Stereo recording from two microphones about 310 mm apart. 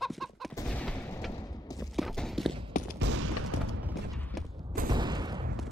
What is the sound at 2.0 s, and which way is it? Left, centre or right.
Clip-clop, centre.